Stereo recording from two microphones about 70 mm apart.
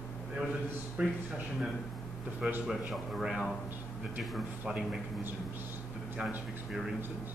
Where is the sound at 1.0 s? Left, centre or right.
Centre.